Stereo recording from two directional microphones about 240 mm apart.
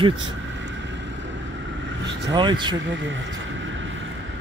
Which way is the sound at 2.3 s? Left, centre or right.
Centre.